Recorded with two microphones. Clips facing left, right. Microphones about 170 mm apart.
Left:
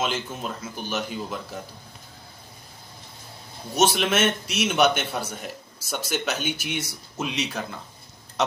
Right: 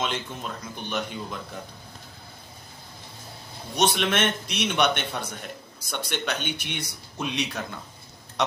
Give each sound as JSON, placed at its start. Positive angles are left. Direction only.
{"t": 0.0, "sound": "speech", "side_deg": 5}
{"t": 3.7, "sound": "speech", "side_deg": 5}